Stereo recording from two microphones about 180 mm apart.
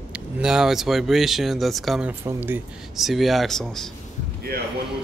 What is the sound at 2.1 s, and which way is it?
Speech, 10° right (ahead or behind).